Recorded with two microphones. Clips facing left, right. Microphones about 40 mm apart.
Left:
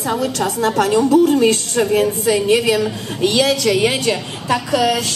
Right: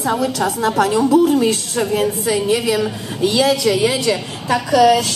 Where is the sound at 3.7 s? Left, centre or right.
Left.